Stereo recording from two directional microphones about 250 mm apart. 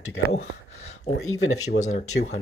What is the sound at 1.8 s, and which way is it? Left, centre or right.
Speech, left.